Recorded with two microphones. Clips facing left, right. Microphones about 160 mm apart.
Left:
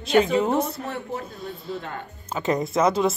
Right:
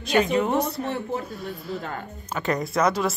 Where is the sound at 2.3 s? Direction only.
20° left (ahead or behind).